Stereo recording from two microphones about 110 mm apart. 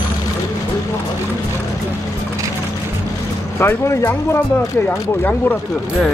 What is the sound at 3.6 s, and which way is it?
Speech, 20° left (ahead or behind).